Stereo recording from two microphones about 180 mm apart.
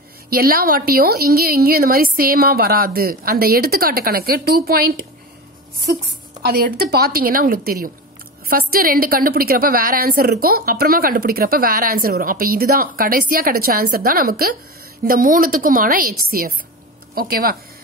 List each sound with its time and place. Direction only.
0.3 s a woman's voice: 55° right (ahead or behind)
6.4 s a woman's voice: 60° right (ahead or behind)